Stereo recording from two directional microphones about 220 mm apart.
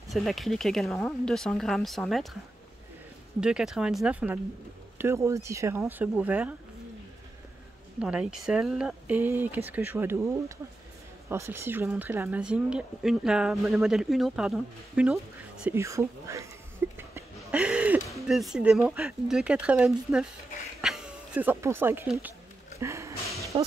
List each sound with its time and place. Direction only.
0.1 s speech: centre (ahead or behind)
3.3 s speech: 5° right (ahead or behind)
8.0 s speech: 5° right (ahead or behind)
22.8 s a sound: 15° right (ahead or behind)
23.5 s speech: 25° right (ahead or behind)